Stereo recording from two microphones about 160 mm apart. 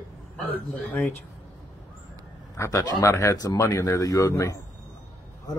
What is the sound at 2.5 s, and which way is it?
Speech, 20° left (ahead or behind).